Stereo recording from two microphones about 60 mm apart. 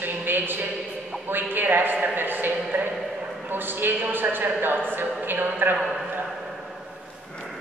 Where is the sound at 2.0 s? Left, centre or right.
Right.